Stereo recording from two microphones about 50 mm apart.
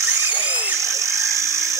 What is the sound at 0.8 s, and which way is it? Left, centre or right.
Vehicle, right.